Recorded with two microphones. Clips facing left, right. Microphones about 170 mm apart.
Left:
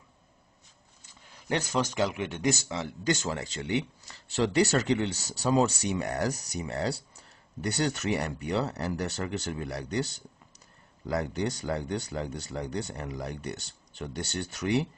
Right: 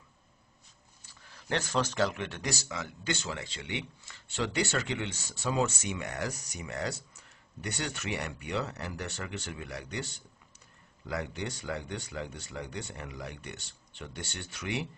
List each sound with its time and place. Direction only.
1.3 s speech: 15° left (ahead or behind); by 14.9 s 40° left (ahead or behind)